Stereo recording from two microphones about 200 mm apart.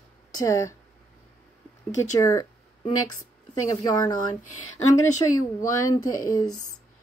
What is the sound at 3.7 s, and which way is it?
A woman's voice, 20° left (ahead or behind).